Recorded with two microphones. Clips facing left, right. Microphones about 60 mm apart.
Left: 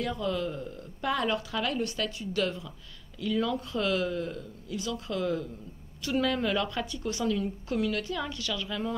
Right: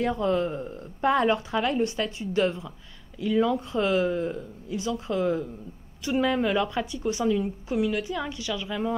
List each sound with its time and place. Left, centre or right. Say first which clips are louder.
0.0 s a woman's voice: right 6 dB; right